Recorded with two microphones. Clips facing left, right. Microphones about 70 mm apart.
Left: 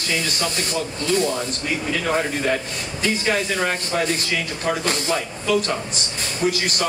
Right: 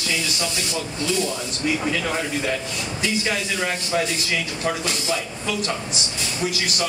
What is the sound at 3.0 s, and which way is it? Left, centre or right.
Speech, left.